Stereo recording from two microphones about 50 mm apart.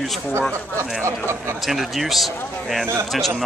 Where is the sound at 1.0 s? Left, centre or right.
Right.